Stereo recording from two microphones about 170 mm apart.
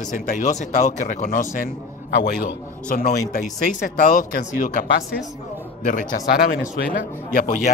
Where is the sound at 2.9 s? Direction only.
55° left (ahead or behind).